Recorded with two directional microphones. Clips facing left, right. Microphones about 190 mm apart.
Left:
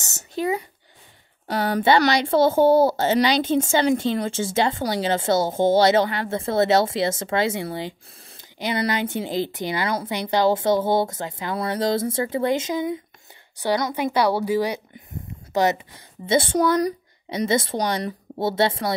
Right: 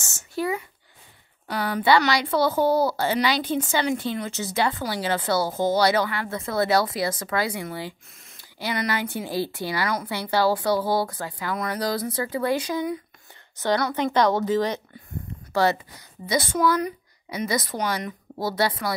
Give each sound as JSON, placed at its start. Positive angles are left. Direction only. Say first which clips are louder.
{"t": 0.0, "sound": "a sound", "louder": "left 2 dB", "side_deg": 20}
{"t": 2.0, "sound": "a woman's voice", "louder": "left 4 dB", "side_deg": 25}
{"t": 16.3, "sound": "a woman's voice", "louder": "left 3 dB", "side_deg": 30}